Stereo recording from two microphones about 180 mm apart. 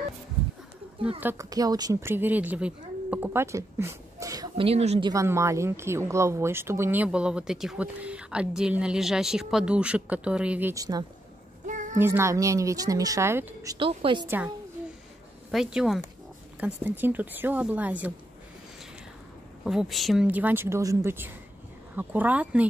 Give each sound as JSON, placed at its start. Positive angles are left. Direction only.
{"t": 1.2, "sound": "speech", "side_deg": -20}
{"t": 4.6, "sound": "speech", "side_deg": -35}
{"t": 5.1, "sound": "speech", "side_deg": -15}
{"t": 10.7, "sound": "a woman's voice", "side_deg": -20}
{"t": 11.6, "sound": "a sound", "side_deg": -45}
{"t": 12.0, "sound": "speech", "side_deg": -15}
{"t": 13.7, "sound": "a woman's voice", "side_deg": -30}
{"t": 14.2, "sound": "speech", "side_deg": -10}
{"t": 15.5, "sound": "speech", "side_deg": -5}
{"t": 19.6, "sound": "speech", "side_deg": 0}